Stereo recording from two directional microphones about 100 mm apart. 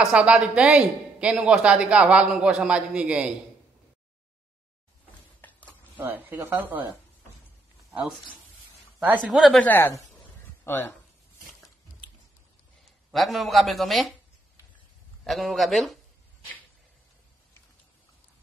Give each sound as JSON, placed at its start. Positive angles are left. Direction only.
{"t": 0.0, "sound": "speech", "side_deg": -10}
{"t": 5.4, "sound": "a sound", "side_deg": 15}
{"t": 5.9, "sound": "speech", "side_deg": -20}
{"t": 9.3, "sound": "a man's voice", "side_deg": 0}
{"t": 9.8, "sound": "speech", "side_deg": 30}
{"t": 10.6, "sound": "speech", "side_deg": 20}
{"t": 12.8, "sound": "a man's voice", "side_deg": 0}
{"t": 15.2, "sound": "a man's voice", "side_deg": 0}